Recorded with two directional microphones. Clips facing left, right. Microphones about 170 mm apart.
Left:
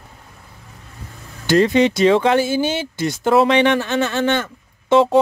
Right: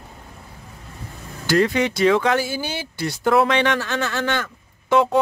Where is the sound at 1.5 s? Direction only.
25° left (ahead or behind).